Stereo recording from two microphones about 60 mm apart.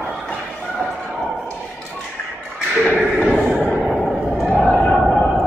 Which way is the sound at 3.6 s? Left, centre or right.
Centre.